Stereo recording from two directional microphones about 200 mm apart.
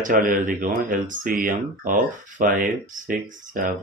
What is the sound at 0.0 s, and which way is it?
Speech, 40° right (ahead or behind).